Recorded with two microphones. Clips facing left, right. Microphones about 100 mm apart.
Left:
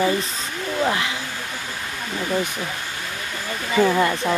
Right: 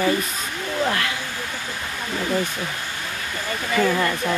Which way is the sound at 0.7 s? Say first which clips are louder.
Left 1 dB; 15° left (ahead or behind).